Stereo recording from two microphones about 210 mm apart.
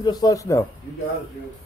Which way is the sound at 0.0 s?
20° left (ahead or behind).